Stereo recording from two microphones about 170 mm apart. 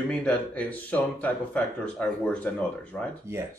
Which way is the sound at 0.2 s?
5° left (ahead or behind).